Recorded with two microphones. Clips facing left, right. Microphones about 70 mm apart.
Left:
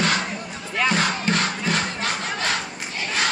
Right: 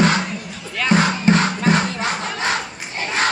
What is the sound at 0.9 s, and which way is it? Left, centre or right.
Music, right.